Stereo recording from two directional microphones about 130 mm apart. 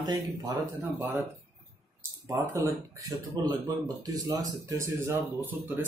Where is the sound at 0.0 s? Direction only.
30° right (ahead or behind).